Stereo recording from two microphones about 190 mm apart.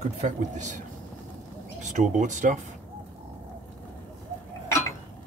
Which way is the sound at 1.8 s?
40° right (ahead or behind).